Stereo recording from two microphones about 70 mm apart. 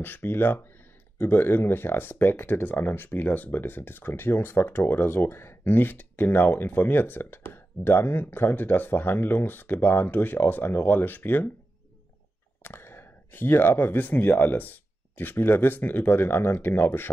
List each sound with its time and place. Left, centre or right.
0.0 s speech: left
12.6 s speech: left